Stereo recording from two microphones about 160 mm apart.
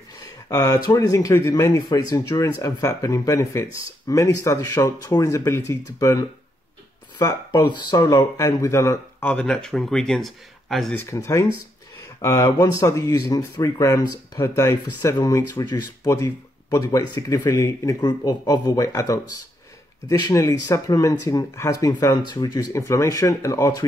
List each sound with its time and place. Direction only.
0.2 s speech: 20° left (ahead or behind)
9.3 s speech: 5° left (ahead or behind)
11.0 s speech: 20° left (ahead or behind)